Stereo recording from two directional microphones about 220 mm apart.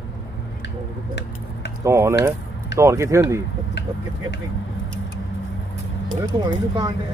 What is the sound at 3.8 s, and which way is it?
Vehicle, 50° left (ahead or behind).